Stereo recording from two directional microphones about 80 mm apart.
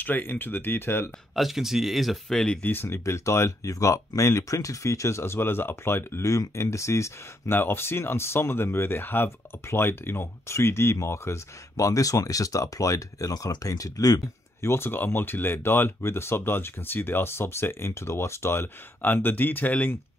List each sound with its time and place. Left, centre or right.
0.0 s speech: left
1.3 s speech: centre
2.6 s speech: left
14.7 s speech: left